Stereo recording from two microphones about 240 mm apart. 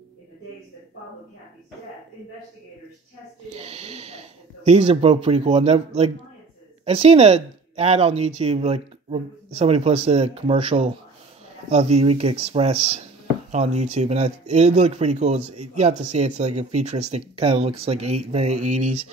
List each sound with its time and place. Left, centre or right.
3.5 s speech: right